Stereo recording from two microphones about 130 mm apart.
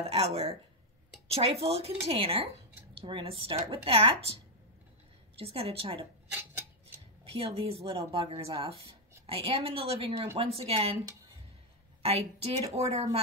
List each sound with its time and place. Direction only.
0.0 s speech: 50° right (ahead or behind)
6.3 s a sound: 15° right (ahead or behind)
7.3 s speech: 50° right (ahead or behind)
12.0 s a woman's voice: 50° right (ahead or behind)